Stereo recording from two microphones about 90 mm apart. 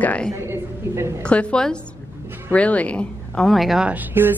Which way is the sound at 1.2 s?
10° left (ahead or behind).